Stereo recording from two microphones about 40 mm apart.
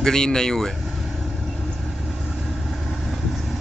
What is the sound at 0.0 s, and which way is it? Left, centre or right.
Speech, centre.